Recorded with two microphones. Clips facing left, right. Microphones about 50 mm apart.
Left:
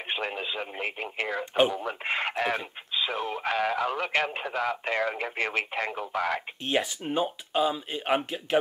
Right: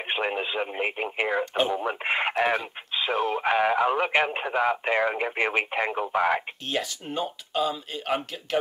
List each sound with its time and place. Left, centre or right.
0.1 s speech: right
6.7 s speech: centre